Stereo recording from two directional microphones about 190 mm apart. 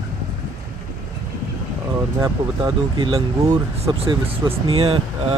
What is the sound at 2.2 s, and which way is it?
Speech, 20° right (ahead or behind).